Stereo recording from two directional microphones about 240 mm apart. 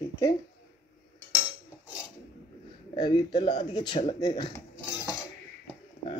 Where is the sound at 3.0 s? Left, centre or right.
Centre.